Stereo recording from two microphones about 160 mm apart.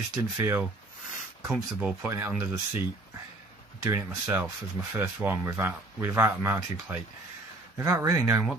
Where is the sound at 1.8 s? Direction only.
10° right (ahead or behind).